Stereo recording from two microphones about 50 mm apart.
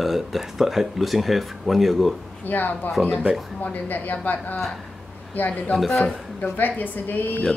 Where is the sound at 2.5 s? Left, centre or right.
Left.